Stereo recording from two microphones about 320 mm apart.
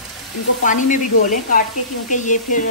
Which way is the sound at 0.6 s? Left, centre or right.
Left.